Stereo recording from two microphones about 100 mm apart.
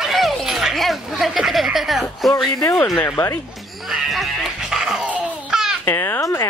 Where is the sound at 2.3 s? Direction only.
30° left (ahead or behind).